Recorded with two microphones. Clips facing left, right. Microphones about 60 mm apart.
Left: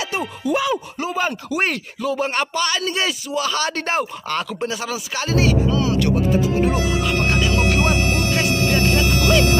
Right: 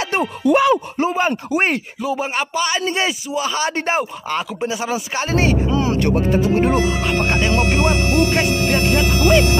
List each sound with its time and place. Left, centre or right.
0.5 s speech: right
1.0 s speech: right
2.0 s speech: centre
5.3 s speech: right
6.4 s speech: right
8.4 s speech: right